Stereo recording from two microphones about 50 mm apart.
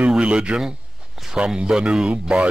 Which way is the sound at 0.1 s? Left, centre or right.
Centre.